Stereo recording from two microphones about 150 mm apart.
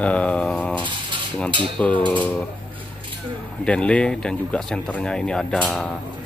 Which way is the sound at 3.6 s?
5° left (ahead or behind).